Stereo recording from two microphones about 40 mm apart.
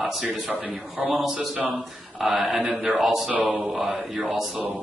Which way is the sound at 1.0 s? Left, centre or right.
Centre.